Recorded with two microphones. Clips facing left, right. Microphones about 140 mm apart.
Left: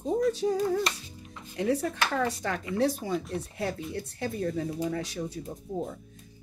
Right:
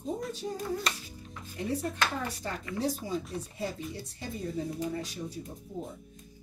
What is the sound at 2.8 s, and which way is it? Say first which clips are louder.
Speech: left 4 dB; 70° left (ahead or behind).